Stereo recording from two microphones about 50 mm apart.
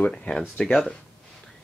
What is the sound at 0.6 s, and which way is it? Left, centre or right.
Speech, centre.